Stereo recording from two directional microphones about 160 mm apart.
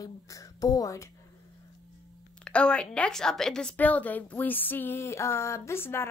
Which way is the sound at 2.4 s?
5° left (ahead or behind).